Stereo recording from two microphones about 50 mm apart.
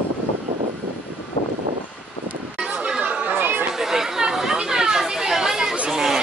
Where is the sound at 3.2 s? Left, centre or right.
Right.